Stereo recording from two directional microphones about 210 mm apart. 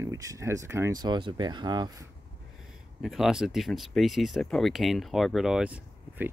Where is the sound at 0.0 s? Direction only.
15° right (ahead or behind).